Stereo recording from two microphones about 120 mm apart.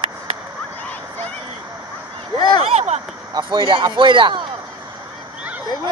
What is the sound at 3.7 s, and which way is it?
Speech, 45° right (ahead or behind).